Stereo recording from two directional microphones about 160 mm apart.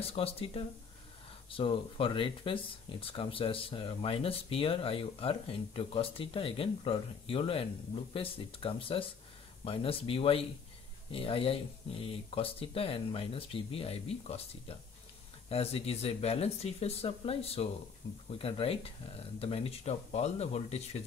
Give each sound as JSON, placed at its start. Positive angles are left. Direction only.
{"t": 0.0, "sound": "speech", "side_deg": 35}